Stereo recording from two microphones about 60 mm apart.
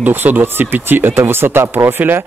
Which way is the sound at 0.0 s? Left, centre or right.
Right.